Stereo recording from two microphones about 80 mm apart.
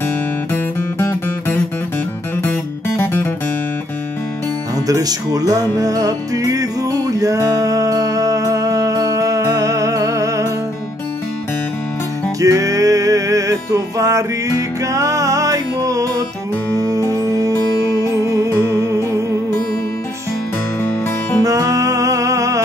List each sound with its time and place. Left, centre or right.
3.0 s music: left
4.8 s music: right
12.4 s music: right
21.4 s music: right